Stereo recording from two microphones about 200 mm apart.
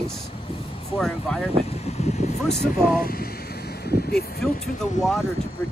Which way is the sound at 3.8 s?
50° left (ahead or behind).